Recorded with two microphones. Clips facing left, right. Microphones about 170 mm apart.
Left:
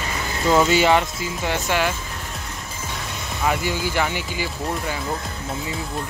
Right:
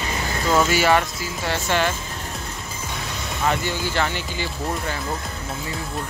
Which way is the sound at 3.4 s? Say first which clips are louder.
Left 1 dB; 10° left (ahead or behind).